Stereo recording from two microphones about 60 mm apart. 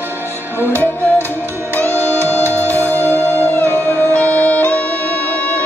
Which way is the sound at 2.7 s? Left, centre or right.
Left.